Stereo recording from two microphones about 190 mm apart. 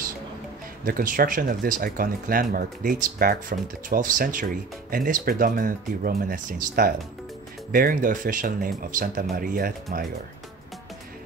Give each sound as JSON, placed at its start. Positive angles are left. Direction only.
{"t": 0.8, "sound": "speech", "side_deg": -50}